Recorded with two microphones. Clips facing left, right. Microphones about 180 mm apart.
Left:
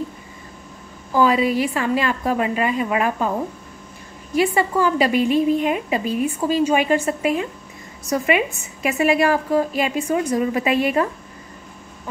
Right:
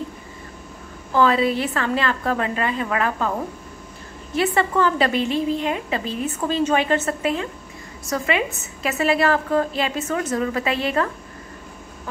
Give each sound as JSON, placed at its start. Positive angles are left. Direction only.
{"t": 1.1, "sound": "a woman's voice", "side_deg": 10}
{"t": 4.4, "sound": "a woman's voice", "side_deg": 10}